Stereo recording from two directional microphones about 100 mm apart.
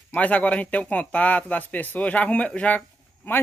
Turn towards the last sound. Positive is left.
turn(degrees=15)  # may be behind; listen again after turning